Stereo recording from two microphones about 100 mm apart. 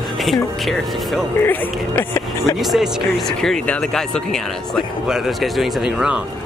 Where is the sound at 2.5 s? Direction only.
5° right (ahead or behind).